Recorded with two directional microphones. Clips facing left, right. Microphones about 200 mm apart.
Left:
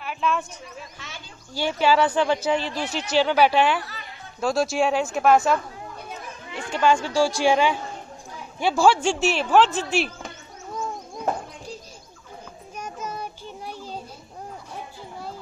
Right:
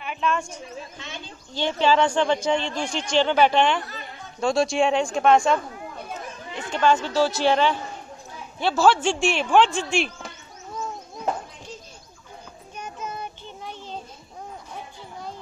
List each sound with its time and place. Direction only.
0.0 s a sound: 5° left (ahead or behind)
0.9 s speech: 20° right (ahead or behind)
1.5 s speech: 10° left (ahead or behind)
6.7 s speech: 10° left (ahead or behind)
12.7 s child singing: 10° left (ahead or behind)